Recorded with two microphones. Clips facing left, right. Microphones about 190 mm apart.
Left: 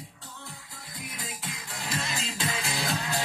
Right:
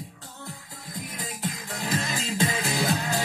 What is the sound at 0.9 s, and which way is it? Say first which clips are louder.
Music: right 4 dB; 45° right (ahead or behind).